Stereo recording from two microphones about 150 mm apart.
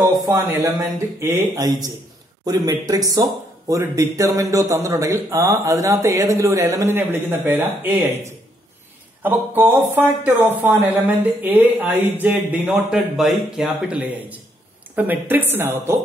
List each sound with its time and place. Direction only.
0.0 s speech: 20° right (ahead or behind)
9.2 s speech: 15° right (ahead or behind)